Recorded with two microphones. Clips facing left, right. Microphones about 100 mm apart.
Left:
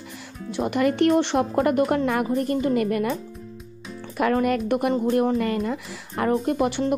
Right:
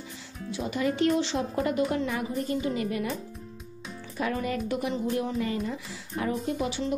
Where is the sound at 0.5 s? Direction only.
60° left (ahead or behind).